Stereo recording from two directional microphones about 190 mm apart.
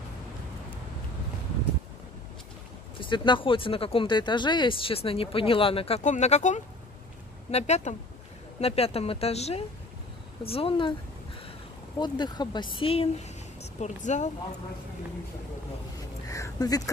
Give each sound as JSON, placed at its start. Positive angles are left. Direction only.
{"t": 3.0, "sound": "speech", "side_deg": 25}
{"t": 12.0, "sound": "speech", "side_deg": 25}
{"t": 16.3, "sound": "speech", "side_deg": 15}